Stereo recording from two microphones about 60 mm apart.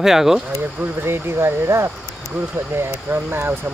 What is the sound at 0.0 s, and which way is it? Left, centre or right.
Speech, centre.